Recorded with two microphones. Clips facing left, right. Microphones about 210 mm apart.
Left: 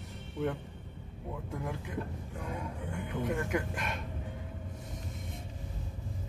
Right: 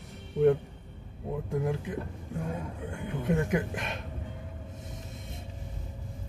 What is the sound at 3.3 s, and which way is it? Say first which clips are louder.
Speech: right 7 dB; 20° right (ahead or behind).